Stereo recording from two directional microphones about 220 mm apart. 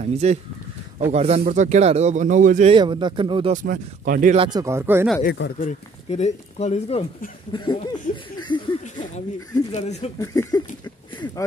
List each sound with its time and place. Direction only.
0.0 s speech: 30° right (ahead or behind)
2.7 s speech: 20° right (ahead or behind)
3.5 s speech: 40° right (ahead or behind)
4.4 s speech: 20° right (ahead or behind)
5.2 s speech: 50° left (ahead or behind)
5.6 s speech: 30° left (ahead or behind)
8.1 s speech: 40° left (ahead or behind)
8.4 s laughter: 20° left (ahead or behind)
9.7 s speech: 30° left (ahead or behind)
10.2 s a sound: 15° left (ahead or behind)